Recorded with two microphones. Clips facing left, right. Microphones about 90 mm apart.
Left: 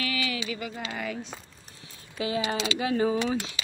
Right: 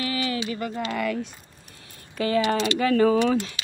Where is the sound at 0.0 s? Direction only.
35° right (ahead or behind); by 3.3 s 70° right (ahead or behind).